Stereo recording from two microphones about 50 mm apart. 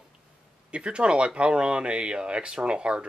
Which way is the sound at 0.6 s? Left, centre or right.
Right.